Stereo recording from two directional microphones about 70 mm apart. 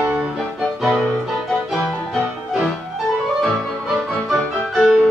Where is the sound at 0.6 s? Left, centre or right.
Centre.